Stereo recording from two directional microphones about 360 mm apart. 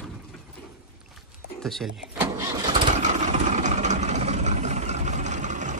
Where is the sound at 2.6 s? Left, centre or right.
Centre.